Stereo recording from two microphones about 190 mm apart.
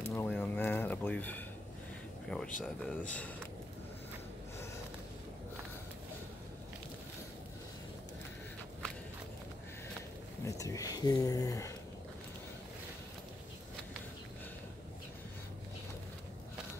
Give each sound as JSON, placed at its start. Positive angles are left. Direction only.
{"t": 0.0, "sound": "a sound", "side_deg": 10}
{"t": 2.2, "sound": "speech", "side_deg": 5}
{"t": 10.4, "sound": "speech", "side_deg": 15}